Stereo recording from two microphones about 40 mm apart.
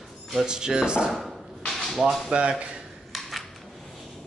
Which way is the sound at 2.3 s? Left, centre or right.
Right.